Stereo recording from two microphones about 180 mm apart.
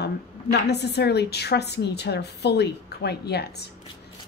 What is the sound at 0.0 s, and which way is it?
A woman's voice, 65° left (ahead or behind).